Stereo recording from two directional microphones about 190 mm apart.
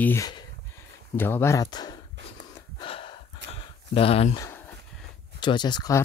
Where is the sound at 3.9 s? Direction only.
30° left (ahead or behind).